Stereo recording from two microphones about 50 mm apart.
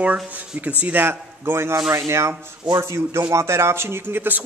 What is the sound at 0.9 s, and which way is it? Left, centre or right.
A man's voice, right.